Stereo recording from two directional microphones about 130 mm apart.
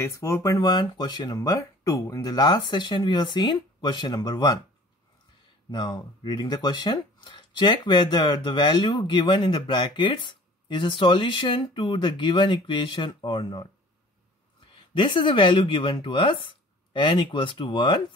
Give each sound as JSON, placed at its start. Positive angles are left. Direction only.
{"t": 0.0, "sound": "speech", "side_deg": 25}
{"t": 5.7, "sound": "speech", "side_deg": 35}
{"t": 15.0, "sound": "speech", "side_deg": 40}